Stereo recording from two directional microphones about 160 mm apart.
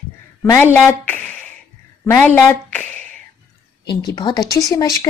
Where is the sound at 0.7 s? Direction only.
10° left (ahead or behind).